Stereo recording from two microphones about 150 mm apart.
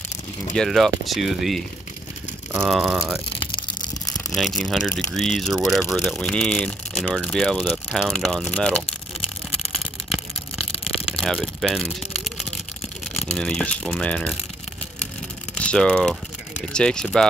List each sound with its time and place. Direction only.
0.6 s speech: centre (ahead or behind)
2.6 s speech: centre (ahead or behind)
3.3 s a sound: 35° left (ahead or behind)
4.4 s speech: centre (ahead or behind)
9.8 s a sound: centre (ahead or behind)
13.1 s speech: 5° left (ahead or behind)
15.5 s speech: 5° left (ahead or behind)